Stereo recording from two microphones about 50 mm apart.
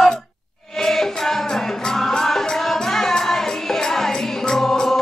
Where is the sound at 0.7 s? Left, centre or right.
Centre.